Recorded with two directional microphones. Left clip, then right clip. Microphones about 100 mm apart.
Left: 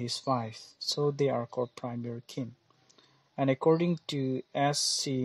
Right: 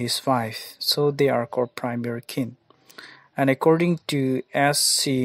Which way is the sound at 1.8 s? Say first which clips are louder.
Right 10 dB; 70° right (ahead or behind).